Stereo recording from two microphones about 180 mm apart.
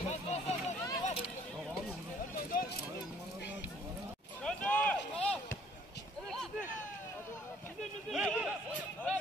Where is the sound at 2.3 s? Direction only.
55° left (ahead or behind).